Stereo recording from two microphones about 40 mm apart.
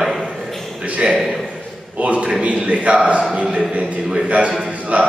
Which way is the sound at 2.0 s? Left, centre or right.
Right.